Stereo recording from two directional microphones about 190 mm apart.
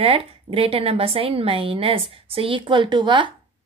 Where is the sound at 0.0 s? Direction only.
30° right (ahead or behind).